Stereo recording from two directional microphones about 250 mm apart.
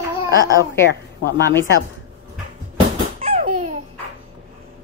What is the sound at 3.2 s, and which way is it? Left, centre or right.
Baby laughter, right.